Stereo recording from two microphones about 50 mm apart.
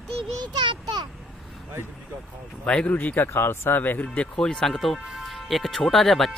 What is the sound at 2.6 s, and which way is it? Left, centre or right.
Speech, centre.